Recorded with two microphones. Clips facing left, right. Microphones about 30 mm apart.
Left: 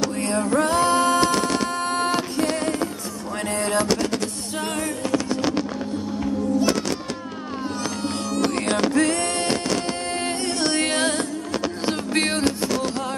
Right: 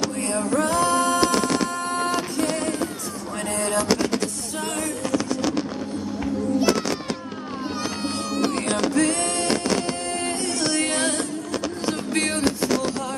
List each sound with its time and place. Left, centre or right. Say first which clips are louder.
0.3 s music: left 2 dB; left
2.0 s music: left 1 dB; left
3.4 s a sound: left 1 dB; left
3.8 s music: even; centre
5.3 s vehicle: left 1 dB; left
6.1 s music: left 1 dB; centre
7.7 s cat: even; right
8.5 s a sound: left 2 dB; left
8.9 s a sound: left 1 dB; left
9.6 s a sound: right 1 dB; centre
10.5 s music: left 2 dB; left
12.4 s fireworks: right 1 dB; centre